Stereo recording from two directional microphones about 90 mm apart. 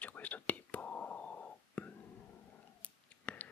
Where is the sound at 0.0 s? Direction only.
15° left (ahead or behind).